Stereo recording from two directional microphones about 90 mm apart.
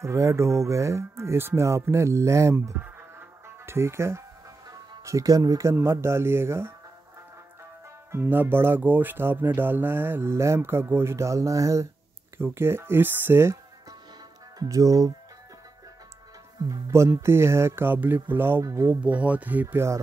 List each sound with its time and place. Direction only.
0.0 s speech: 35° right (ahead or behind)
2.8 s music: 25° right (ahead or behind)
4.6 s speech: 40° right (ahead or behind)
8.1 s speech: 20° right (ahead or behind)
12.4 s speech: 25° right (ahead or behind)
14.6 s speech: 40° right (ahead or behind)
16.6 s speech: 40° right (ahead or behind)
19.0 s speech: 15° right (ahead or behind)